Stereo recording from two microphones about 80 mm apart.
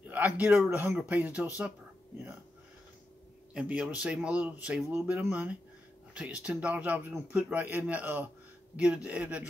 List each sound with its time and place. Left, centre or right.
0.0 s a man's voice: right
3.5 s a man's voice: centre